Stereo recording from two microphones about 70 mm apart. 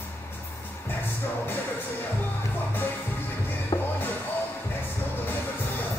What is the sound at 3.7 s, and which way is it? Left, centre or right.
Music, left.